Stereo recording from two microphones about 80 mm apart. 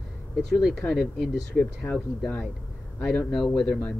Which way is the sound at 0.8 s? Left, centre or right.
Centre.